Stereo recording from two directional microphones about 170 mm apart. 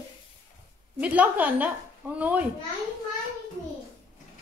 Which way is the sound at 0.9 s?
10° right (ahead or behind).